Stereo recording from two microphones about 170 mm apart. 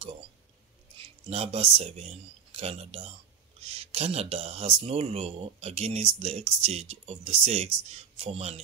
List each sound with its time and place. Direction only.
1.3 s speech: 35° right (ahead or behind)